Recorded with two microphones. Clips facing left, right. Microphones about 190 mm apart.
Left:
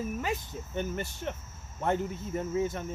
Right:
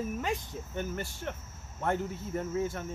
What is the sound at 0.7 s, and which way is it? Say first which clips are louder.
Speech: left 3 dB; 20° left (ahead or behind).